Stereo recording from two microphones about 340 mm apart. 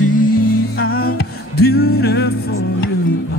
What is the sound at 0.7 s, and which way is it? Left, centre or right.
Music, left.